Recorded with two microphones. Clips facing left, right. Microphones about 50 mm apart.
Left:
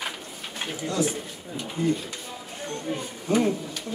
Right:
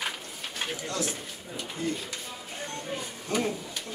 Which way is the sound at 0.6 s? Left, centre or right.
Centre.